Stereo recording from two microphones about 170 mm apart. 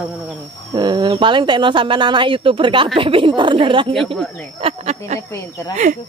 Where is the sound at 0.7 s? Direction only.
20° right (ahead or behind); by 5.2 s 40° right (ahead or behind).